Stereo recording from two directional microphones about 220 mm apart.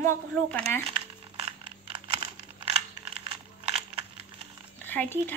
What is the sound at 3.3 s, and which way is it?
Coin, 25° right (ahead or behind).